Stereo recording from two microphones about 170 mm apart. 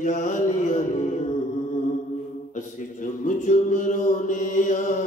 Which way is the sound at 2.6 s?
50° left (ahead or behind).